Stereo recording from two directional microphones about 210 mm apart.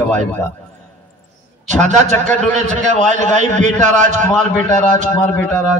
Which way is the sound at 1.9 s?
35° right (ahead or behind).